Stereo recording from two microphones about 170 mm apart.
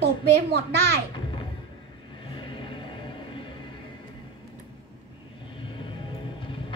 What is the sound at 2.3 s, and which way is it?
Music, 30° left (ahead or behind).